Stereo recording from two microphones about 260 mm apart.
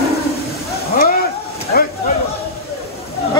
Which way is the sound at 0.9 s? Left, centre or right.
Left.